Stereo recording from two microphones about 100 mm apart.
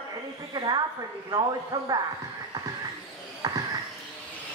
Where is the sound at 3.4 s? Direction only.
40° right (ahead or behind).